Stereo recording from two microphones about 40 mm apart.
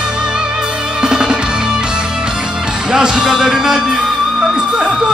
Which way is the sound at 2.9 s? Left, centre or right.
Centre.